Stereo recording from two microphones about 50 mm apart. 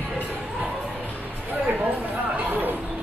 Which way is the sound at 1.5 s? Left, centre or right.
Right.